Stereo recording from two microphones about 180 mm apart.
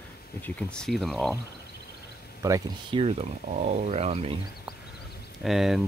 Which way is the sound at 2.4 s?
20° right (ahead or behind).